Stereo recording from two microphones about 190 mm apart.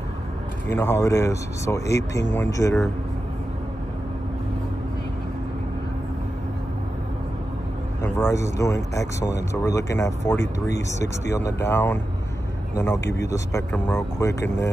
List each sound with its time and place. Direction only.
0.7 s speech: 15° left (ahead or behind)
8.0 s speech: 15° left (ahead or behind)